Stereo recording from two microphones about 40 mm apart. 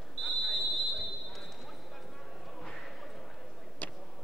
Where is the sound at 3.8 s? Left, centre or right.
Left.